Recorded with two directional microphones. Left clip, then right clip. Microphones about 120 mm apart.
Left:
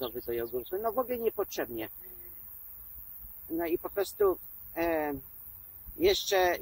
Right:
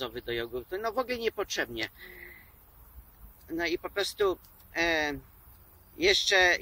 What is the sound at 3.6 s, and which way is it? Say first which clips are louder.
Speech: right 1 dB; 15° right (ahead or behind).